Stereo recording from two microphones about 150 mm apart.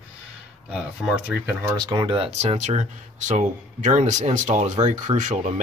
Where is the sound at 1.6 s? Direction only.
30° right (ahead or behind).